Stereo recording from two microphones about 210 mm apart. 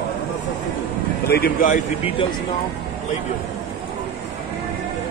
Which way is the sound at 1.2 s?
50° left (ahead or behind).